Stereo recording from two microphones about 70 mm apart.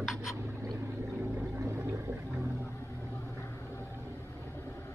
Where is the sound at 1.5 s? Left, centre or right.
Right.